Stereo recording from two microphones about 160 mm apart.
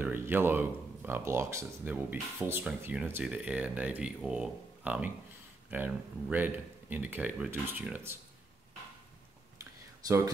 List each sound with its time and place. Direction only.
0.0 s speech: 10° right (ahead or behind)
10.0 s speech: 20° right (ahead or behind)